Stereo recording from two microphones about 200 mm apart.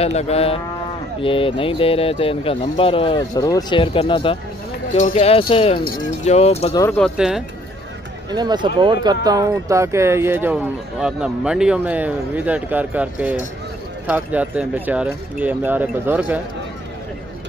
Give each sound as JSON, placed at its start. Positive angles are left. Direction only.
{"t": 0.0, "sound": "speech", "side_deg": 30}
{"t": 6.7, "sound": "speech", "side_deg": 15}
{"t": 7.0, "sound": "speech", "side_deg": 0}
{"t": 8.3, "sound": "speech", "side_deg": -20}